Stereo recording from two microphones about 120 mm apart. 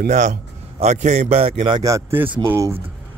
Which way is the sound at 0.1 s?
80° right.